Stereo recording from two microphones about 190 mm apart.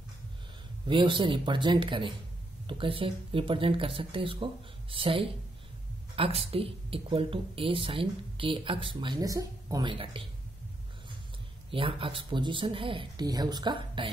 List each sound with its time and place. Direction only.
0.8 s speech: 25° right (ahead or behind)
11.7 s speech: 25° right (ahead or behind)